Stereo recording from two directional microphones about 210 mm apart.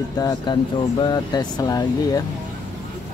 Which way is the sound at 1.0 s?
20° left (ahead or behind).